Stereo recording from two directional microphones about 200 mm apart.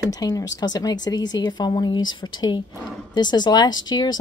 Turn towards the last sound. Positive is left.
turn(degrees=20)  # may be behind; listen again after turning